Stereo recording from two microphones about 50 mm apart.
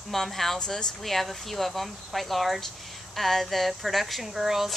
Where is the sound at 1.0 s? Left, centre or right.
Centre.